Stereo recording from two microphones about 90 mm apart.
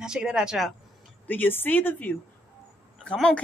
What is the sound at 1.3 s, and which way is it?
Speech, 20° left (ahead or behind).